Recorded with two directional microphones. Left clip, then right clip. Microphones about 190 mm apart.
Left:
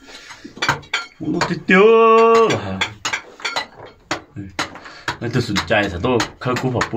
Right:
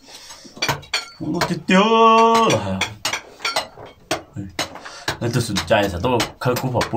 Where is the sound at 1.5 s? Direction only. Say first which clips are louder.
Left 5 dB; 10° right (ahead or behind).